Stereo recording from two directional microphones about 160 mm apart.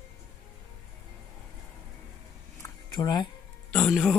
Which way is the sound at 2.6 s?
25° left (ahead or behind).